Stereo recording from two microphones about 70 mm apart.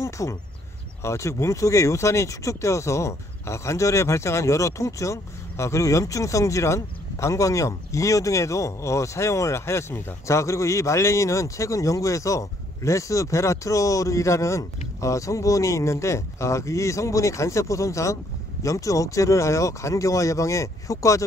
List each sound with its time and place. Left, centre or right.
0.0 s speech: left
10.2 s speech: left